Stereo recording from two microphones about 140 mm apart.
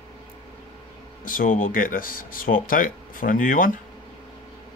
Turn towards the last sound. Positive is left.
turn(degrees=75)  # may be behind; listen again after turning